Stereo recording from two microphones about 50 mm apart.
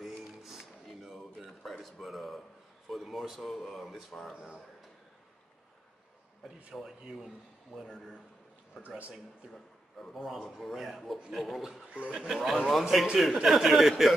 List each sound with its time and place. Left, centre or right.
0.0 s music: centre
1.6 s a sound: centre
2.9 s speech: centre
6.4 s a man's voice: centre
7.7 s a man's voice: centre
8.8 s speech: right
9.5 s a man's voice: centre
10.1 s a man's voice: centre
12.1 s a man's voice: centre